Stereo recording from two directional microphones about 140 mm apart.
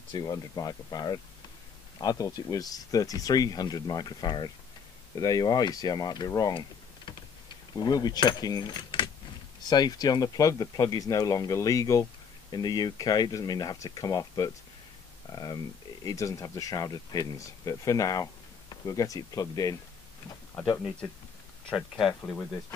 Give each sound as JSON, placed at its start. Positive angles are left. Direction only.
{"t": 0.1, "sound": "speech", "side_deg": 25}
{"t": 7.7, "sound": "speech", "side_deg": 30}
{"t": 21.6, "sound": "speech", "side_deg": 0}